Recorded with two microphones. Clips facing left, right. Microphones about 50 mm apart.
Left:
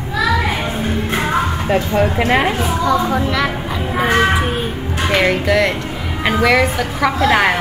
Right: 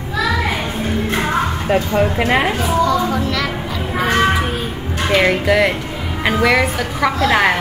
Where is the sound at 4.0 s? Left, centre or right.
Centre.